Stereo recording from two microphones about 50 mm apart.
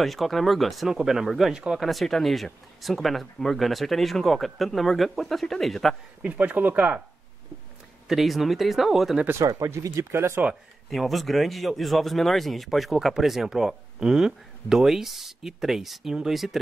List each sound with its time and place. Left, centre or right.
0.0 s speech: centre
1.9 s speech: centre
6.2 s speech: right
8.1 s speech: centre
9.4 s speech: right
10.9 s speech: centre